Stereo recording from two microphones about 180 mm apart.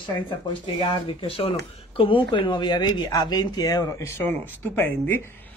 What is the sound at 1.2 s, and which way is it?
Speech, 30° left (ahead or behind).